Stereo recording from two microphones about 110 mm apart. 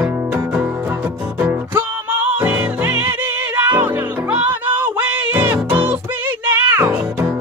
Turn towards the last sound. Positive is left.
turn(degrees=-20)  # may be behind; listen again after turning